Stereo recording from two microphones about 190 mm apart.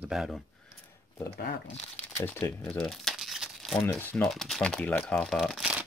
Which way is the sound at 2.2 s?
10° left (ahead or behind).